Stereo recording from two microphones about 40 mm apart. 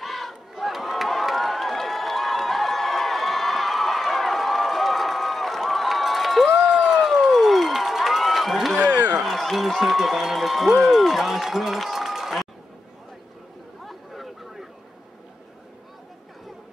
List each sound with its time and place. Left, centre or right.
0.0 s crowd: centre
8.9 s a sound: right
9.2 s speech: centre
13.8 s chatter: centre